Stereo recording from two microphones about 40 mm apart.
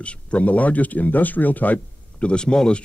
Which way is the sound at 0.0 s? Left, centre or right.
Left.